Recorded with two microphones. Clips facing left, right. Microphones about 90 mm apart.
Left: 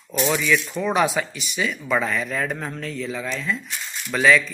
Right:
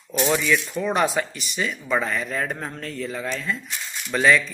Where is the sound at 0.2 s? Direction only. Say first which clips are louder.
Even; 35° right (ahead or behind).